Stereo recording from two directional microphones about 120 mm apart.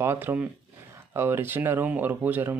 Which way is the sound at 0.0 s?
20° right (ahead or behind).